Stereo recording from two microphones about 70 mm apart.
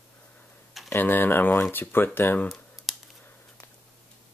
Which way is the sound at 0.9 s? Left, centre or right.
Left.